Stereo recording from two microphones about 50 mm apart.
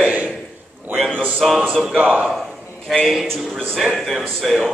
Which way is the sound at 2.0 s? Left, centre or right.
Right.